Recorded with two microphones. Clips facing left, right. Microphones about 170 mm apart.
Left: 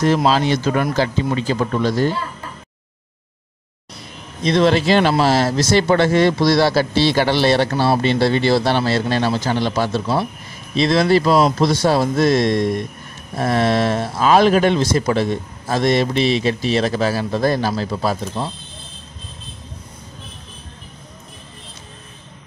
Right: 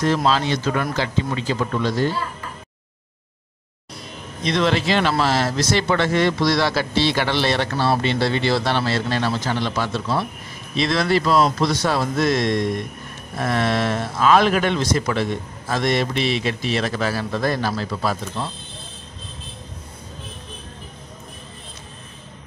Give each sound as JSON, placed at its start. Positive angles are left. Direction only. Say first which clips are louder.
{"t": 0.0, "sound": "speech", "louder": "left 3 dB", "side_deg": 35}
{"t": 4.5, "sound": "speech", "louder": "left 5 dB", "side_deg": 40}